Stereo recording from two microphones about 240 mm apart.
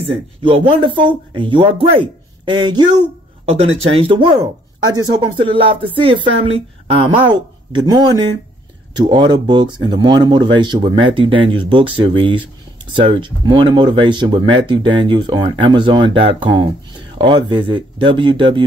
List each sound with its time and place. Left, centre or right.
0.4 s speech: right